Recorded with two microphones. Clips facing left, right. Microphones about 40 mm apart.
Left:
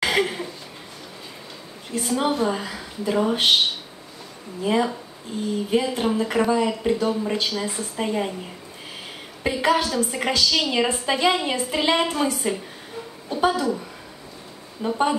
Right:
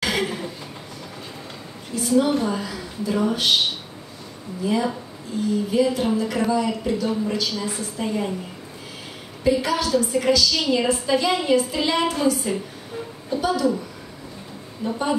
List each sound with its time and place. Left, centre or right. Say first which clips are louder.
0.0 s chuckle: left 2 dB; left
2.0 s a woman's voice: right 3 dB; left
4.6 s a woman's voice: left 1 dB; left
9.4 s a woman's voice: even; left
14.8 s a woman's voice: left 2 dB; left